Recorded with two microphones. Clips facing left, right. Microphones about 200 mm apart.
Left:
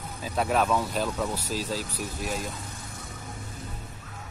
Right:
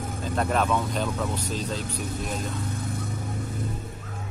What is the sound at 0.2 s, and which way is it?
Speech, 5° left (ahead or behind).